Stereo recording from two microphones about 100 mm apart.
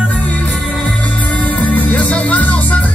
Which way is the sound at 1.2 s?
15° left (ahead or behind).